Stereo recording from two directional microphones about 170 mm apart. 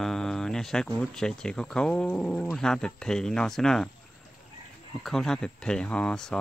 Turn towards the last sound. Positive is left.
turn(degrees=5)  # may be behind; listen again after turning